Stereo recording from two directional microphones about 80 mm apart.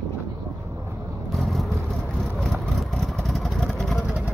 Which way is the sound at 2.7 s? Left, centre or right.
Centre.